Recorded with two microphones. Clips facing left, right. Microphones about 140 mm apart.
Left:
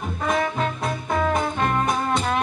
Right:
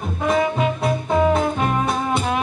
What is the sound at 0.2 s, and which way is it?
Music, 10° right (ahead or behind).